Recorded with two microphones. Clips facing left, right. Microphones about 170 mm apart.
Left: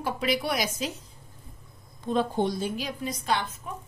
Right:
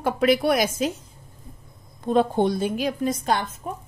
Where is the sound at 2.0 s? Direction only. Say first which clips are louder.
Right 6 dB; 60° right (ahead or behind); by 3.8 s 40° right (ahead or behind).